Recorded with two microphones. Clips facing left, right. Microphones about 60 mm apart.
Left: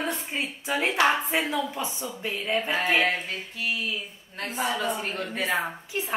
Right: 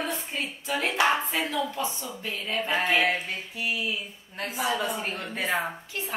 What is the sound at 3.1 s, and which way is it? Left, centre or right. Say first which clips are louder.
Speech: even; centre.